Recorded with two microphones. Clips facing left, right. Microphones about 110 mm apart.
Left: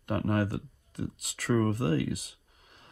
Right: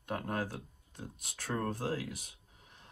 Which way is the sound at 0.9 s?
80° left.